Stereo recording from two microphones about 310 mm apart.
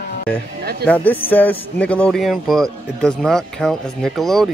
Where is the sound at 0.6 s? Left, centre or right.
Right.